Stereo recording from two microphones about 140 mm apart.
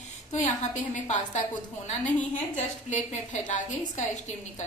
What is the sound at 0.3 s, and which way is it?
A woman's voice, 60° left (ahead or behind).